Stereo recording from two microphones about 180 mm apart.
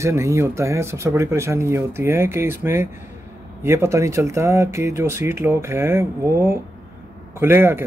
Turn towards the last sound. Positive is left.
turn(degrees=-15)  # may be behind; listen again after turning